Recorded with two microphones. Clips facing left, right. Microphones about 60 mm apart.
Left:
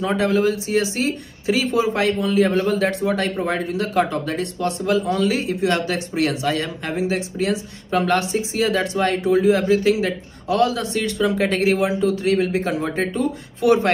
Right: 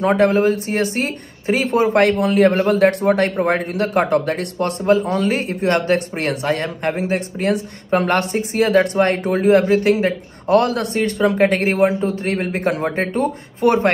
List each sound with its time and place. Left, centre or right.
0.0 s speech: right
4.8 s speech: right
11.0 s speech: right